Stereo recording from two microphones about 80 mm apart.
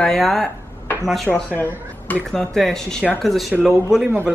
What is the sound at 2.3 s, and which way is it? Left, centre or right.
Speech, centre.